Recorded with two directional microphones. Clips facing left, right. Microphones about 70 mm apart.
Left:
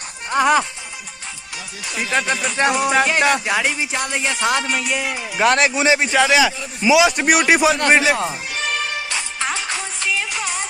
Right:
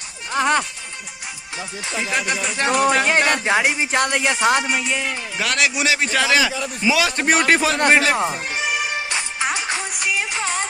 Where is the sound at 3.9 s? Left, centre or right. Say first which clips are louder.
Right 3 dB; right.